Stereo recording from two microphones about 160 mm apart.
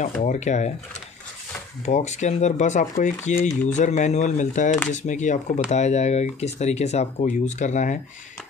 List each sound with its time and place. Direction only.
0.2 s speech: 50° left (ahead or behind)
1.9 s speech: 45° left (ahead or behind)